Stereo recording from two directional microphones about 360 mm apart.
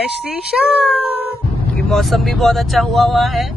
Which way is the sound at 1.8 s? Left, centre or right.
Centre.